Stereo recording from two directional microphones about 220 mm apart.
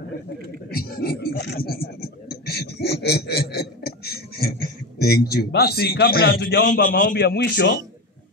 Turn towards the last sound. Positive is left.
turn(degrees=45)  # may be behind; listen again after turning